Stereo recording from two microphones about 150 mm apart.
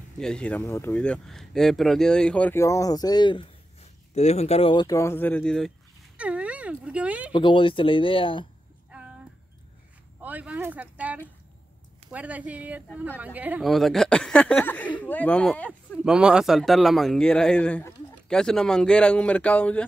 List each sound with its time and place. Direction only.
0.2 s a man's voice: 5° left (ahead or behind)
0.7 s speech: 20° left (ahead or behind)
0.9 s speech: 5° left (ahead or behind); by 3.4 s 30° left (ahead or behind)
4.1 s speech: 45° left (ahead or behind)
4.8 s speech: 20° left (ahead or behind)
6.1 s speech: 10° right (ahead or behind)
7.3 s speech: 35° left (ahead or behind)
8.9 s a sound: 10° right (ahead or behind)
10.2 s a man's voice: 10° right (ahead or behind); by 15.7 s 10° left (ahead or behind)
16.0 s a man's voice: 5° right (ahead or behind)